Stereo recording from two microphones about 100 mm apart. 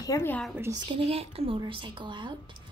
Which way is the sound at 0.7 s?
45° right (ahead or behind).